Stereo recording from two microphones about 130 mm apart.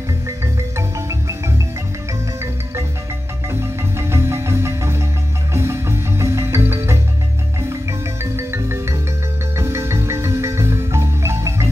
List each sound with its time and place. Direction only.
0.7 s music: 20° right (ahead or behind)
3.4 s marimba: 20° right (ahead or behind)
5.5 s music: 20° right (ahead or behind)